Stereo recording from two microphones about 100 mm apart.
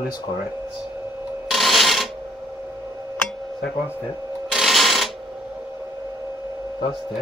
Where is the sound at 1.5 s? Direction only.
Centre (ahead or behind).